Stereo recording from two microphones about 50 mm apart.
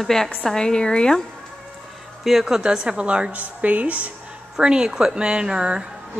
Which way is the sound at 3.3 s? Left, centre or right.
Right.